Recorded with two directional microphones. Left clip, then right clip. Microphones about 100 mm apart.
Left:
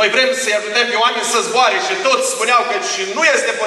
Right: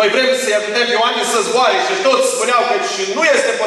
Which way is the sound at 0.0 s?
15° left (ahead or behind).